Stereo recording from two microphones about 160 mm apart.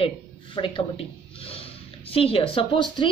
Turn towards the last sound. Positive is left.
turn(degrees=30)  # may be behind; listen again after turning